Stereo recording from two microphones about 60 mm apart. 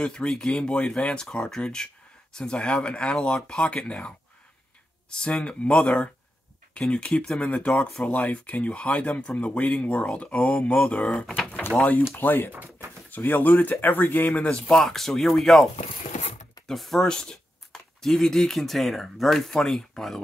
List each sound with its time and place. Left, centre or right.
0.0 s speech: centre
5.1 s speech: centre
7.6 s speech: centre
8.0 s speech: left
12.2 s speech: left
14.3 s speech: centre
16.6 s speech: centre